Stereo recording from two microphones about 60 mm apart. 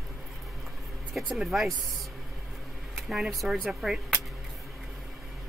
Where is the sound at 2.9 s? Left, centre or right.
Centre.